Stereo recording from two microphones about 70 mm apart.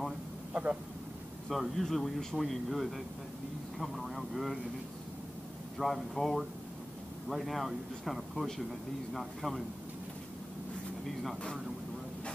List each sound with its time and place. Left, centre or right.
0.5 s speech: right
1.5 s speech: centre
5.8 s speech: centre
11.1 s speech: centre